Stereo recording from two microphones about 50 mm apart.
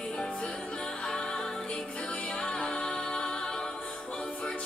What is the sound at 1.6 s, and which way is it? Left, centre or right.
Music, left.